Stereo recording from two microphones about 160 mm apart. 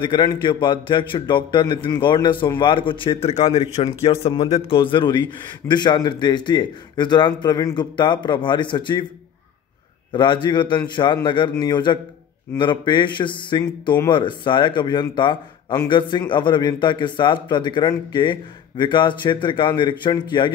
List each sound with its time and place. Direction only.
0.0 s a man's voice: 25° left (ahead or behind)
10.1 s a man's voice: 30° left (ahead or behind)